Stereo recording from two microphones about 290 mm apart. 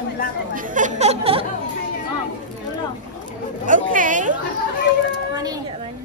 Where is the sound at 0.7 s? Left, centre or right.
Right.